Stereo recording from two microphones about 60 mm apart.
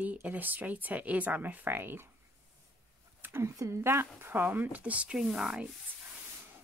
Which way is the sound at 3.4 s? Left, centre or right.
Right.